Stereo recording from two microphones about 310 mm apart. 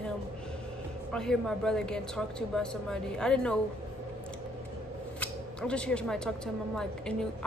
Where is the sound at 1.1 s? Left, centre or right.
Centre.